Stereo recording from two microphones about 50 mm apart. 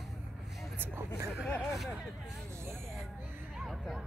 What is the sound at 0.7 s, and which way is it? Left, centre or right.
Vehicle, right.